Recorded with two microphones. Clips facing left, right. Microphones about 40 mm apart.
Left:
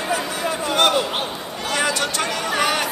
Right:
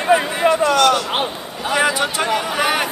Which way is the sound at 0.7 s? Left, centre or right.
Left.